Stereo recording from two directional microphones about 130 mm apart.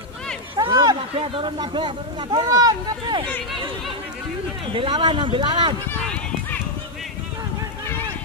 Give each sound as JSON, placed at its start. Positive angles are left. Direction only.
{"t": 0.7, "sound": "a sound", "side_deg": -25}
{"t": 1.3, "sound": "speech", "side_deg": -40}
{"t": 4.7, "sound": "speech", "side_deg": -40}